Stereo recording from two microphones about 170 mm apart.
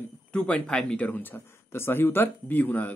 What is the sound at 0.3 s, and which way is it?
Speech, 5° left (ahead or behind).